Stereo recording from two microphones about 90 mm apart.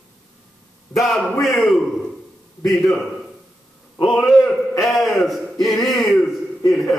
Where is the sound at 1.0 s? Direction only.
Centre (ahead or behind).